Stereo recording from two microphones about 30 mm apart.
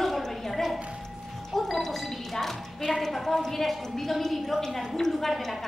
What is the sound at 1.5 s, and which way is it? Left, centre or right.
Music, centre.